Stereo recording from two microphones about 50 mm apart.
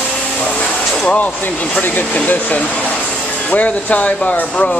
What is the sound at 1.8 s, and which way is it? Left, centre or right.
Speech, left.